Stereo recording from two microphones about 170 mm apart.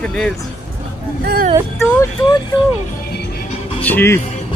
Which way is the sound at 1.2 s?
65° right (ahead or behind).